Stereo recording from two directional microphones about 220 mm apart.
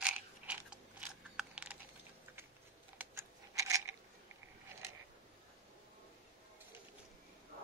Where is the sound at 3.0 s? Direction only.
10° right (ahead or behind).